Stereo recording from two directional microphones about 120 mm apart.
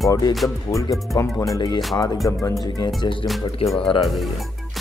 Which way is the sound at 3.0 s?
45° left (ahead or behind).